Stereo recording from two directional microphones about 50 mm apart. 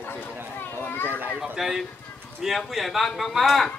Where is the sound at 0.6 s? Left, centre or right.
Left.